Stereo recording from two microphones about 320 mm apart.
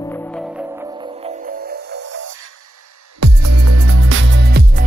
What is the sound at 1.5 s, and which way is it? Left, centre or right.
Music, right.